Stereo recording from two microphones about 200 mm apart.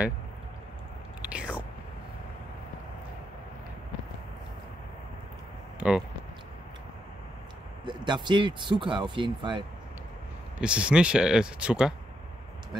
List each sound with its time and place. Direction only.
1.3 s whispering: 5° right (ahead or behind)
5.8 s a sound: 5° right (ahead or behind)
7.8 s speech: 25° right (ahead or behind)
10.6 s speech: 5° right (ahead or behind)